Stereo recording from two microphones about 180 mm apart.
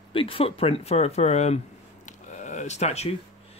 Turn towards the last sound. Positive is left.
turn(degrees=35)  # may be behind; listen again after turning